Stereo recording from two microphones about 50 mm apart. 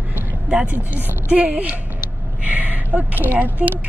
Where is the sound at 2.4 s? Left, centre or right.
Right.